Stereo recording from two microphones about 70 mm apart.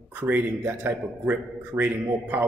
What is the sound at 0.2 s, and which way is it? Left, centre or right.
A man's voice, right.